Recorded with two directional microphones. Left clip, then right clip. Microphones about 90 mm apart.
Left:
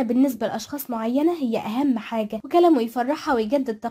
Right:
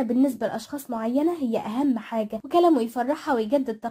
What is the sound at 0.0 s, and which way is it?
A woman's voice, 5° left (ahead or behind).